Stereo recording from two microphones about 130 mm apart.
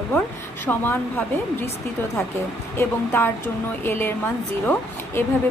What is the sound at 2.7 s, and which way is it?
Speech, 15° left (ahead or behind).